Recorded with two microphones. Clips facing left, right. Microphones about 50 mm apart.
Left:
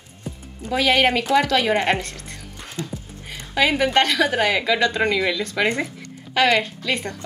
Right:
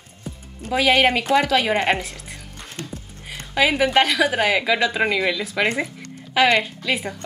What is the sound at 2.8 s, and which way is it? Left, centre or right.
Music, right.